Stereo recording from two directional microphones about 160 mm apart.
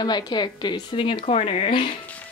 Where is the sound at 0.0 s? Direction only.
25° left (ahead or behind).